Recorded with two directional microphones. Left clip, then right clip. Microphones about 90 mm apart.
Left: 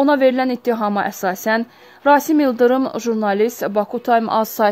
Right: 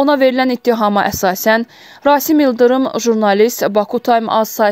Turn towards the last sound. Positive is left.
turn(degrees=-15)  # may be behind; listen again after turning